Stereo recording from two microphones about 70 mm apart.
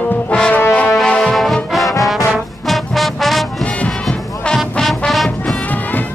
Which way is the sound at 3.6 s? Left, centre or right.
Centre.